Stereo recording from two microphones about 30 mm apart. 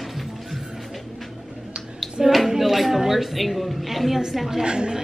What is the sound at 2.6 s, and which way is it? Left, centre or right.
A woman's voice, centre.